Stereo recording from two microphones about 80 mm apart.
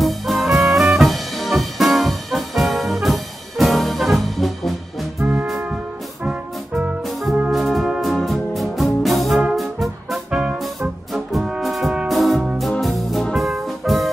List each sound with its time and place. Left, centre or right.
0.0 s music: centre
5.2 s music: centre
6.2 s brass instrument: centre
7.5 s music: centre
9.0 s brass instrument: centre
9.4 s music: centre